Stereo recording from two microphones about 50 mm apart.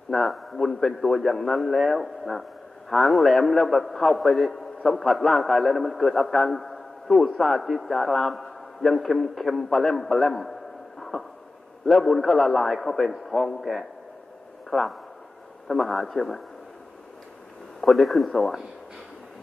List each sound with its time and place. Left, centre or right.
0.1 s a man's voice: centre
11.0 s a sound: centre
11.8 s a man's voice: centre
17.7 s a man's voice: centre